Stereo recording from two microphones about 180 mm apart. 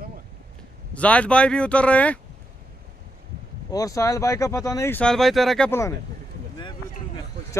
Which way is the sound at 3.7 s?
20° left (ahead or behind).